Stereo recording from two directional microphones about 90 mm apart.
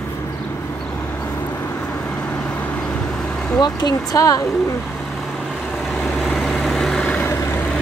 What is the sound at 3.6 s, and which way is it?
Speech, 50° left (ahead or behind).